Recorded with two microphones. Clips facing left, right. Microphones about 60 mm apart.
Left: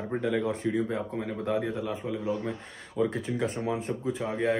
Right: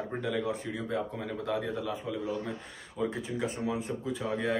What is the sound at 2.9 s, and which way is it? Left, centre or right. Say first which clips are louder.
Speech: left 5 dB; left.